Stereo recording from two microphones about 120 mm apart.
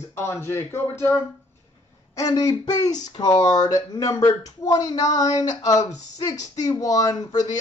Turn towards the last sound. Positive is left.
turn(degrees=30)  # may be behind; listen again after turning